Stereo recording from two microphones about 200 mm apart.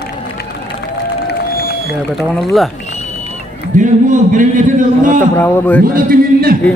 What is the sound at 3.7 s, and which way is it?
A man's voice, 40° right (ahead or behind).